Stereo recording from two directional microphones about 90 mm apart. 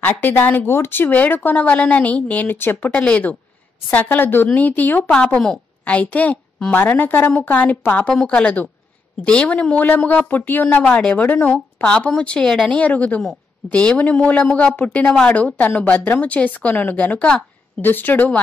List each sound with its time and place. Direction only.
0.0 s a woman's voice: 20° left (ahead or behind)